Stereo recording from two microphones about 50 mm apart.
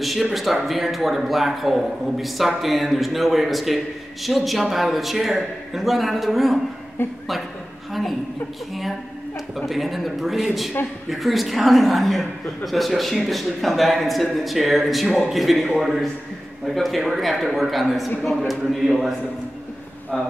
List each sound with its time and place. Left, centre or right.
0.0 s a man's voice: centre
7.0 s a woman's voice: left
9.7 s a man's voice: centre